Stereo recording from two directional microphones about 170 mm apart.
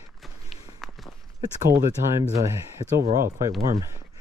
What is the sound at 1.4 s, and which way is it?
Speech, 15° right (ahead or behind).